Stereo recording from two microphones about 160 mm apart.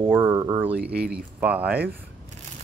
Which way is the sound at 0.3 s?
25° right (ahead or behind).